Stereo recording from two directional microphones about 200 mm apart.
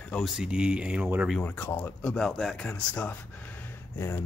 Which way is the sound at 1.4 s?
10° left (ahead or behind).